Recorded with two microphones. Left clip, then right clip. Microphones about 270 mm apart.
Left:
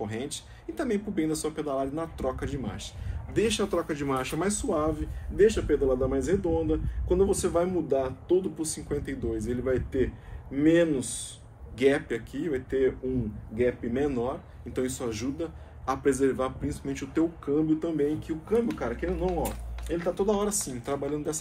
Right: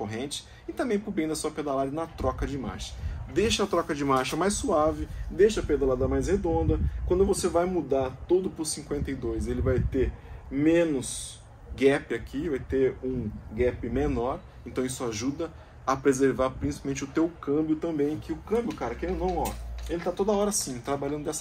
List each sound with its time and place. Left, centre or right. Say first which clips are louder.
0.0 s speech: right 1 dB; centre